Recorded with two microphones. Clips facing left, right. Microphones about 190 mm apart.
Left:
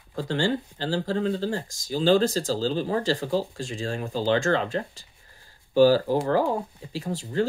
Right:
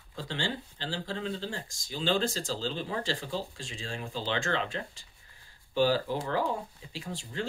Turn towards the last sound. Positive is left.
turn(degrees=40)  # may be behind; listen again after turning